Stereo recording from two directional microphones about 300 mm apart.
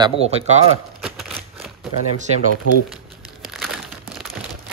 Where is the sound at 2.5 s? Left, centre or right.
Left.